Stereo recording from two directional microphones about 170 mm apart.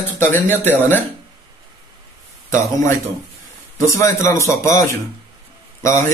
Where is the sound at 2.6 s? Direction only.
15° left (ahead or behind).